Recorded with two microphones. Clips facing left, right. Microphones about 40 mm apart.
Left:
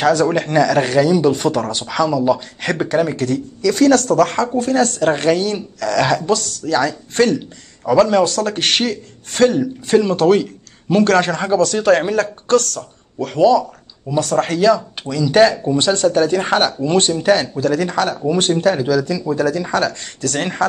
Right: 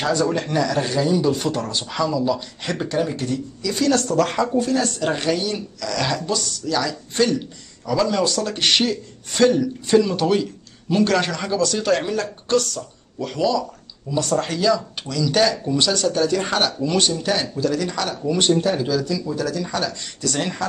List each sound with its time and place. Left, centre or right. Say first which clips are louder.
0.0 s a man's voice: left 6 dB; left
15.0 s speech: left 6 dB; left
17.3 s a man's voice: left 6 dB; left
18.1 s speech: left 5 dB; left
18.6 s a man's voice: left 5 dB; left